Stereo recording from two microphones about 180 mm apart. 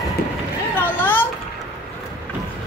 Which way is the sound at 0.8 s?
10° left (ahead or behind).